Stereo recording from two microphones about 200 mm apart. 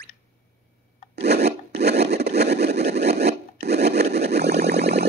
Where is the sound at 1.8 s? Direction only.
55° right (ahead or behind).